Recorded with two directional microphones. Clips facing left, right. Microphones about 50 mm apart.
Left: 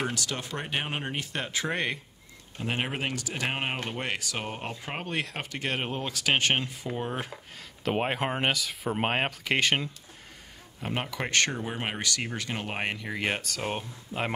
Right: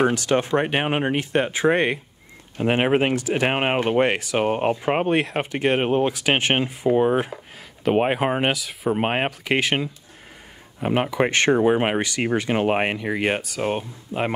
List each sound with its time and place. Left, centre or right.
0.0 s speech: right
7.8 s speech: centre
10.8 s speech: right